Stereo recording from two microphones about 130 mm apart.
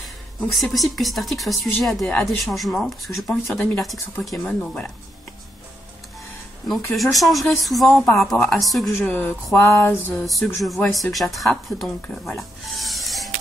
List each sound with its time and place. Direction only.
0.5 s speech: centre (ahead or behind)
3.5 s speech: 10° left (ahead or behind)
6.7 s speech: centre (ahead or behind)
8.9 s speech: 15° left (ahead or behind)
10.2 s speech: centre (ahead or behind)